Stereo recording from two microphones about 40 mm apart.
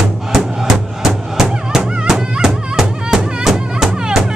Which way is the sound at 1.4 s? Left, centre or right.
Centre.